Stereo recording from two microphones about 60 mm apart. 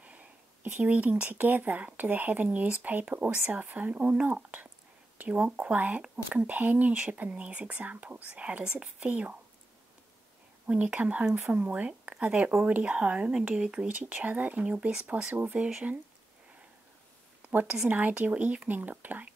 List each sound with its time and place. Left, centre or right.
0.0 s speech: right
10.7 s speech: right
11.2 s speech: centre
11.5 s speech: right
17.5 s a woman's voice: right